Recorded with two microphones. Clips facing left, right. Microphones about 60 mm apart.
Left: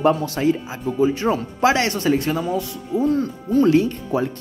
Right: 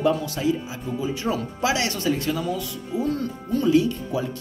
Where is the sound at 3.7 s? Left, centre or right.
Left.